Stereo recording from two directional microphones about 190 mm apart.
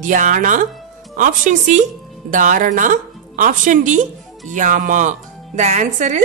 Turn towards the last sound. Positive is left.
turn(degrees=-40)  # may be behind; listen again after turning